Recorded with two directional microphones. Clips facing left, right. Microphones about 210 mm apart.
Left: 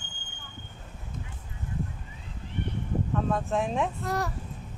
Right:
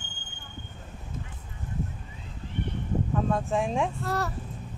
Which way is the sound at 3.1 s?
Centre (ahead or behind).